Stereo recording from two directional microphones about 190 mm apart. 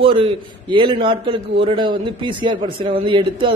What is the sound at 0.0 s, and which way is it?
A man's voice, 25° right (ahead or behind).